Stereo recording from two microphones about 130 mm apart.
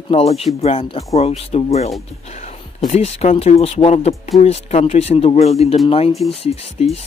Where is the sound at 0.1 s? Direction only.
50° left (ahead or behind).